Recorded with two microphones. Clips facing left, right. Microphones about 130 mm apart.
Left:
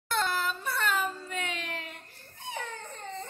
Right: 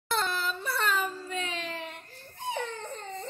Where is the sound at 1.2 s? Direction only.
25° right (ahead or behind).